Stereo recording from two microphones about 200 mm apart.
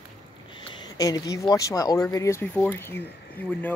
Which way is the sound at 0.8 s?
20° left (ahead or behind).